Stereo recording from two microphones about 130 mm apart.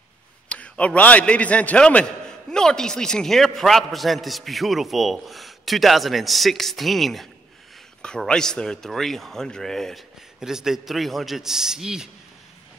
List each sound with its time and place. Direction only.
0.5 s a man's voice: 10° left (ahead or behind)